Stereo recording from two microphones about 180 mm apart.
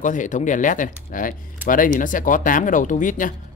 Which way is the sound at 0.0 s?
45° left (ahead or behind).